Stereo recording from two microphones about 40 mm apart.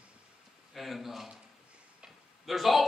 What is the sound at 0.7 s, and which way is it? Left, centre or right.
Speech, centre.